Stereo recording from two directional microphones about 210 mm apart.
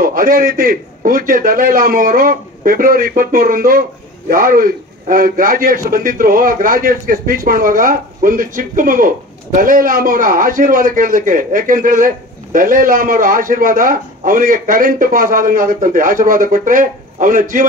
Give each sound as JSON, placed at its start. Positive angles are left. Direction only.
{"t": 0.0, "sound": "a man's voice", "side_deg": -45}